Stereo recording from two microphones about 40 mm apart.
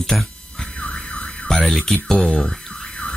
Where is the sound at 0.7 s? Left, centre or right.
Left.